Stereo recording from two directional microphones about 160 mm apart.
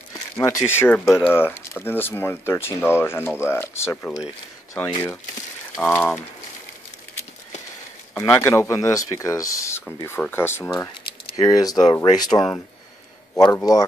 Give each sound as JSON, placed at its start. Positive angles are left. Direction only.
{"t": 0.4, "sound": "speech", "side_deg": 15}
{"t": 5.8, "sound": "speech", "side_deg": 10}
{"t": 8.2, "sound": "speech", "side_deg": 15}
{"t": 13.3, "sound": "speech", "side_deg": 15}